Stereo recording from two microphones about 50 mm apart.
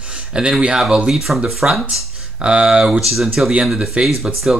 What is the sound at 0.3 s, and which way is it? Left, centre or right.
Speech, centre.